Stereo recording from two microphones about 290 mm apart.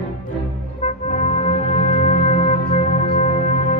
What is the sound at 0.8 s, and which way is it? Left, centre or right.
Music, left.